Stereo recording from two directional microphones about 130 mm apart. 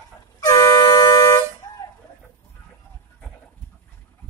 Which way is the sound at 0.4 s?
25° left (ahead or behind).